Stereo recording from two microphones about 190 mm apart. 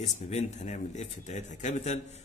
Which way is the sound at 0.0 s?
35° left (ahead or behind).